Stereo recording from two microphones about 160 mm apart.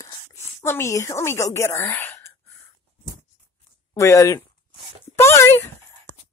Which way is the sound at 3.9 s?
20° left (ahead or behind).